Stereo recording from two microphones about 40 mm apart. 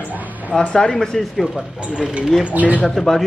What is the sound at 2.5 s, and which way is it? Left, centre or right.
Speech, right.